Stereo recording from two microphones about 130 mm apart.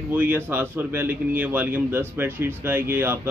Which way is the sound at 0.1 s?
15° right (ahead or behind).